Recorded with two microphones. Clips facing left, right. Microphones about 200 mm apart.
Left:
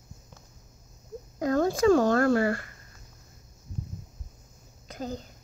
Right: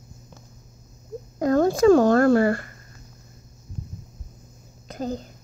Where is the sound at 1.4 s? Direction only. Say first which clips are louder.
Right 5 dB; 45° right (ahead or behind).